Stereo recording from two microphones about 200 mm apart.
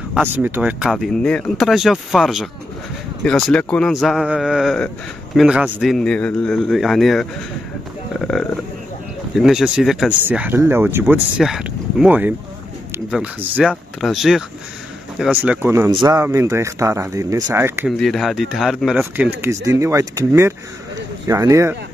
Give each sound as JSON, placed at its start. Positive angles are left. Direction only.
{"t": 0.1, "sound": "speech", "side_deg": -10}
{"t": 9.4, "sound": "speech", "side_deg": 0}
{"t": 15.4, "sound": "speech", "side_deg": -10}
{"t": 17.8, "sound": "speech", "side_deg": 0}